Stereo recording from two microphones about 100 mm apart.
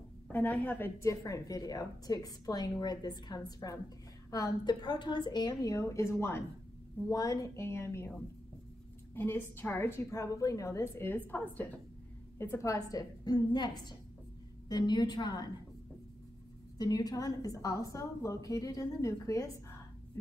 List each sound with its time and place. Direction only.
0.3 s a woman's voice: 20° left (ahead or behind)
9.1 s a woman's voice: 20° left (ahead or behind)
13.2 s a woman's voice: 40° left (ahead or behind)
16.7 s a woman's voice: 40° left (ahead or behind)